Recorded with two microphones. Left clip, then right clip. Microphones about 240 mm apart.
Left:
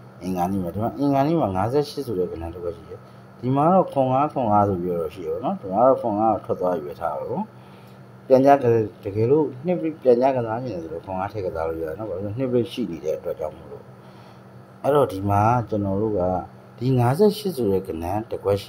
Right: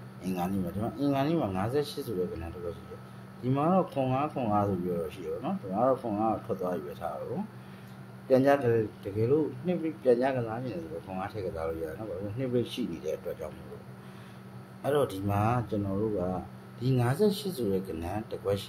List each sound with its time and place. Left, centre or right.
0.2 s speech: left
8.3 s speech: left
14.8 s speech: left